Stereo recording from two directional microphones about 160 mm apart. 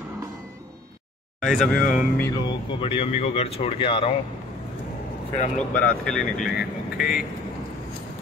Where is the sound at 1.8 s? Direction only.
55° left (ahead or behind).